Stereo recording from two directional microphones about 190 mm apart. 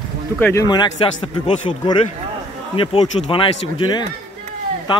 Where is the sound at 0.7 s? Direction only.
20° left (ahead or behind).